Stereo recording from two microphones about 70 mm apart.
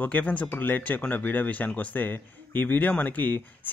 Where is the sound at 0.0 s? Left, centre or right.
Left.